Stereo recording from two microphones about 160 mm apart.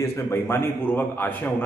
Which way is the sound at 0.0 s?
15° left (ahead or behind).